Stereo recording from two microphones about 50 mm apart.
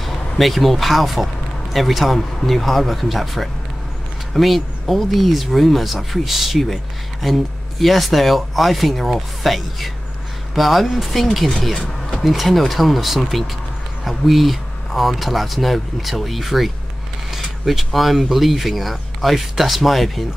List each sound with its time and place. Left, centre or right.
0.0 s speech: centre
11.7 s a sound: centre
12.2 s speech: centre